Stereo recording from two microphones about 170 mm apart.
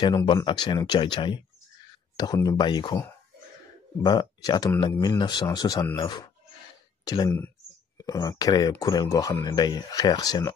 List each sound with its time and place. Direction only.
0.0 s speech: 25° left (ahead or behind)